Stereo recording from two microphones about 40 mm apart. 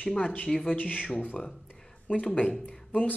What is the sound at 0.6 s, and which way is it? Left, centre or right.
Speech, left.